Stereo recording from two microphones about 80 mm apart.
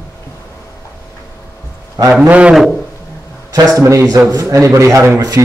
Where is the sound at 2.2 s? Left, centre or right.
Centre.